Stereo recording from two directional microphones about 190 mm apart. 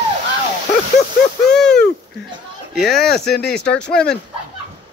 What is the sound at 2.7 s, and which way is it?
Speech, centre (ahead or behind).